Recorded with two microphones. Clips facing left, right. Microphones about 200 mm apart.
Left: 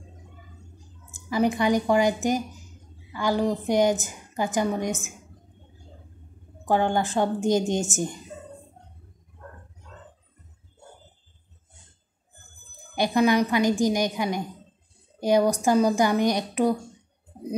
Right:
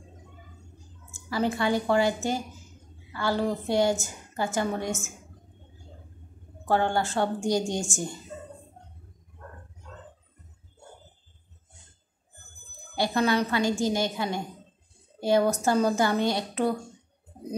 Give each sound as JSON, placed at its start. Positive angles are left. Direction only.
{"t": 1.1, "sound": "a woman's voice", "side_deg": 15}
{"t": 6.7, "sound": "speech", "side_deg": 15}
{"t": 12.9, "sound": "a woman's voice", "side_deg": 15}